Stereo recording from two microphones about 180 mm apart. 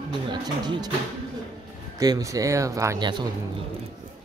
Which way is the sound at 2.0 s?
20° right (ahead or behind).